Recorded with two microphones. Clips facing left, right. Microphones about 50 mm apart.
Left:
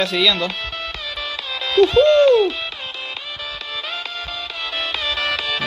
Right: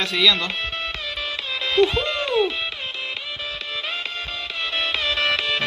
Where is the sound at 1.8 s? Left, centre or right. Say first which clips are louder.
Left 8 dB; left.